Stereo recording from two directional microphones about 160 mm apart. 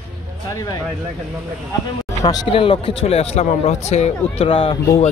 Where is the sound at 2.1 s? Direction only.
20° left (ahead or behind).